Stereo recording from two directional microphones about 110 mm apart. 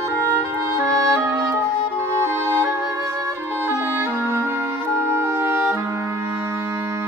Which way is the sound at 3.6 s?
20° right (ahead or behind).